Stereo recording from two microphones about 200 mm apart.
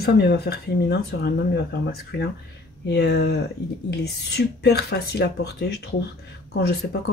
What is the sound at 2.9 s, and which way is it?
Speech, 55° left (ahead or behind).